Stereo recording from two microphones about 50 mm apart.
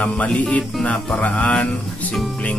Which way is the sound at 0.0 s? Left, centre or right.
Left.